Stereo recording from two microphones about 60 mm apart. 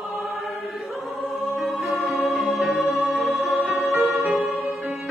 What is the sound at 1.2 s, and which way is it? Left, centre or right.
Music, centre.